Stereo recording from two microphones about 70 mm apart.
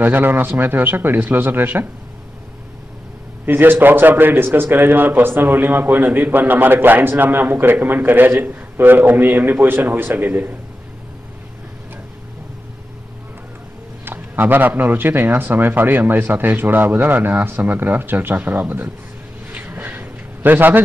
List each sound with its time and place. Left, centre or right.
0.0 s a man's voice: right
3.4 s a man's voice: right
14.0 s a man's voice: right
19.5 s a sound: right